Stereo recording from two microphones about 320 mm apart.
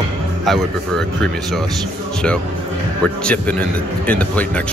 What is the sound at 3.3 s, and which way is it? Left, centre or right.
Speech, centre.